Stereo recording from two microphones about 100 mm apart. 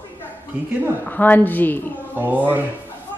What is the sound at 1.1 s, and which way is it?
Speech, 15° left (ahead or behind).